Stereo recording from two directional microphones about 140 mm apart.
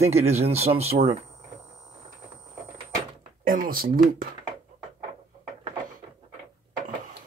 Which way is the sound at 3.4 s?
85° right.